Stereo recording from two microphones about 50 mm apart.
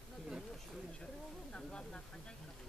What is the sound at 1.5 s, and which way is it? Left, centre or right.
Speech, centre.